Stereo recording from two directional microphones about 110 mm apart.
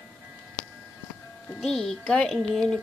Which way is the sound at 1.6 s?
5° left (ahead or behind).